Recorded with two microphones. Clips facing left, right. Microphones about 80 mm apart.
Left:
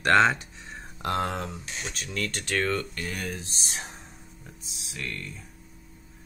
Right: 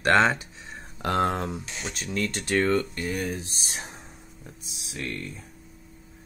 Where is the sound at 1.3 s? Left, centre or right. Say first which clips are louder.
Right 4 dB; right.